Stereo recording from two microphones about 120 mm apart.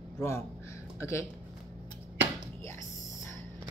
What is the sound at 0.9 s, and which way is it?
Speech, 25° left (ahead or behind).